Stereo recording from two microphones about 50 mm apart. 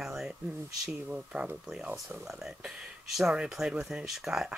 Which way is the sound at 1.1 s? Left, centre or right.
Right.